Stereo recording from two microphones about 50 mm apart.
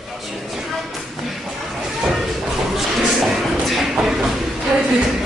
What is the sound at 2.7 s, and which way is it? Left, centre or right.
Music, centre.